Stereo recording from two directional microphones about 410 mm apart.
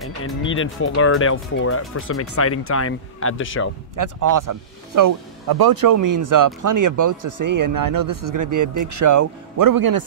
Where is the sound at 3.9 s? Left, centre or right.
Right.